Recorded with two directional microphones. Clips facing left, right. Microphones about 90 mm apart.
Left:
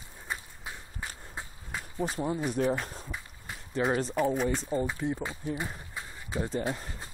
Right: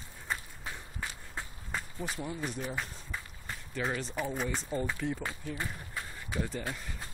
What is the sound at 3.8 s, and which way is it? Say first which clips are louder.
Speech: left 6 dB; 35° left (ahead or behind).